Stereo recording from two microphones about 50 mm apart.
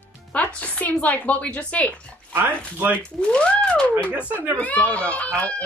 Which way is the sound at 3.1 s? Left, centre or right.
Centre.